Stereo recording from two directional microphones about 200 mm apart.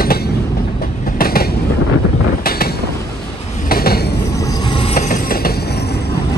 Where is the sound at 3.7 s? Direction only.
50° left (ahead or behind).